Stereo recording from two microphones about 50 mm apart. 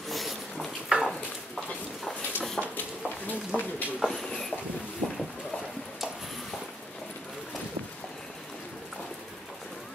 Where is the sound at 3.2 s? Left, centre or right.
Left.